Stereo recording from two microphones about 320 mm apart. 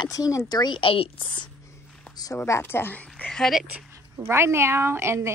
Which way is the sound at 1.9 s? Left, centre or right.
Centre.